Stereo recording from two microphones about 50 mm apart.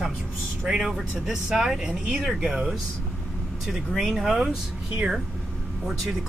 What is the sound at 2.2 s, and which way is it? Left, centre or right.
Speech, centre.